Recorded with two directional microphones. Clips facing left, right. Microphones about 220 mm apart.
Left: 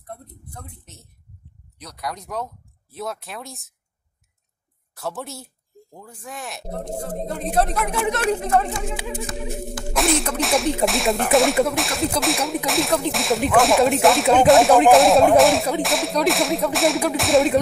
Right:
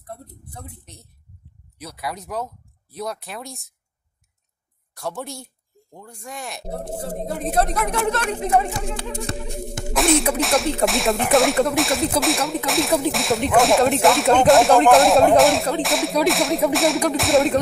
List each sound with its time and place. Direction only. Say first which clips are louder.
0.0 s whip: right 1 dB; 5° right (ahead or behind)
4.9 s speech: right 1 dB; centre (ahead or behind)
7.1 s whip: right 4 dB; 5° right (ahead or behind)
8.4 s speech: right 1 dB; 15° right (ahead or behind)
9.9 s whip: right 3 dB; centre (ahead or behind)